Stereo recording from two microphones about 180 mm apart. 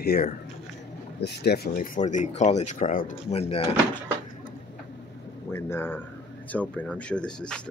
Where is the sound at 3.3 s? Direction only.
35° left (ahead or behind).